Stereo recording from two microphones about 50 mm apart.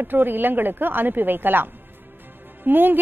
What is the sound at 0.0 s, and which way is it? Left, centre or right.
A woman's voice, right.